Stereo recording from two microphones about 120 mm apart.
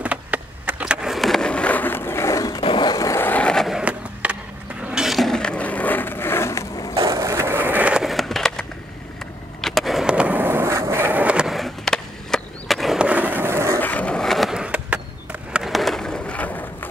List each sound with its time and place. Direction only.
0.0 s skateboard: 10° right (ahead or behind); by 2.6 s 25° left (ahead or behind)
2.6 s skateboard: 40° left (ahead or behind); by 3.8 s centre (ahead or behind)
3.8 s skateboard: 10° right (ahead or behind)
4.8 s a sound: 5° right (ahead or behind); by 6.9 s 25° left (ahead or behind)
7.2 s skateboard: 25° right (ahead or behind)
13.7 s skateboard: 15° left (ahead or behind)